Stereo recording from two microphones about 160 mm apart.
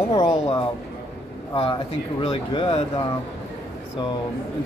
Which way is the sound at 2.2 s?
35° left (ahead or behind).